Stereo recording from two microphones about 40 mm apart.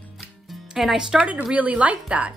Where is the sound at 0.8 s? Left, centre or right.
Centre.